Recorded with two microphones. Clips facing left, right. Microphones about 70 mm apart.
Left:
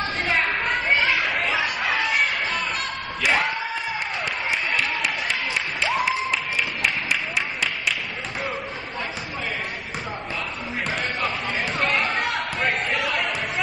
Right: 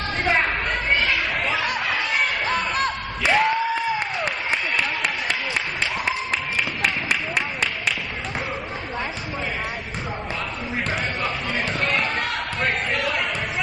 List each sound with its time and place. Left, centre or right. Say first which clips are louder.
0.2 s chatter: right 3 dB; centre
3.2 s a sound: right 3 dB; centre
11.8 s basketball bounce: left 3 dB; centre